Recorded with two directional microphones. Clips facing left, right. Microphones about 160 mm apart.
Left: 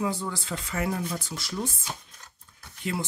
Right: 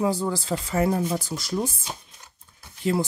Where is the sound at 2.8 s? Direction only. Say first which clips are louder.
Right 7 dB; 35° right (ahead or behind).